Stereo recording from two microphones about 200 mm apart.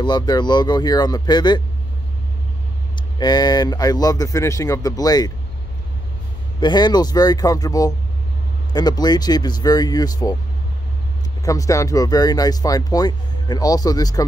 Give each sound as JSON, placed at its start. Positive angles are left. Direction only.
{"t": 0.0, "sound": "speech", "side_deg": 20}
{"t": 3.2, "sound": "speech", "side_deg": 20}
{"t": 6.6, "sound": "speech", "side_deg": 20}
{"t": 11.4, "sound": "speech", "side_deg": 15}